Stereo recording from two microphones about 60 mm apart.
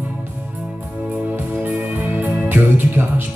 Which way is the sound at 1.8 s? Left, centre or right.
Right.